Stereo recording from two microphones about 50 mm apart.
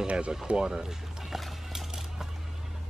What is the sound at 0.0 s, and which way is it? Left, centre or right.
Speech, right.